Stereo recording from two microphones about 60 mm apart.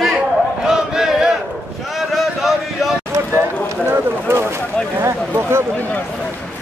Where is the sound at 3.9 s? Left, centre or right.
Right.